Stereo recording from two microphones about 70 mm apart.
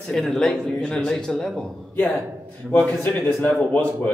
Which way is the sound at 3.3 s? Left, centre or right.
Centre.